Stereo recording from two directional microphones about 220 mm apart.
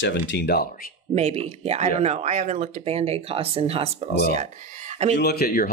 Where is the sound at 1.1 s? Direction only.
30° right (ahead or behind).